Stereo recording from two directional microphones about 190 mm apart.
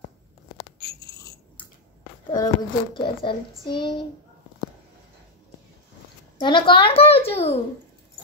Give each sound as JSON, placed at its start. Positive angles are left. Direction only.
{"t": 0.7, "sound": "bicycle bell", "side_deg": 55}
{"t": 2.3, "sound": "a child's voice", "side_deg": 20}
{"t": 6.4, "sound": "a child's voice", "side_deg": 25}